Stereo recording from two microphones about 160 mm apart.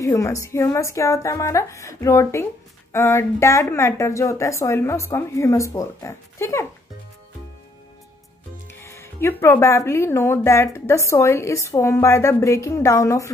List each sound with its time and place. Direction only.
0.0 s a woman's voice: 20° left (ahead or behind)
8.7 s speech: 15° left (ahead or behind)